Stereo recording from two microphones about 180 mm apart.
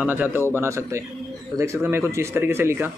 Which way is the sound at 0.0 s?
10° right (ahead or behind).